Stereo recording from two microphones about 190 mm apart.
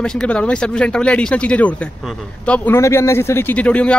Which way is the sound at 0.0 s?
5° left (ahead or behind).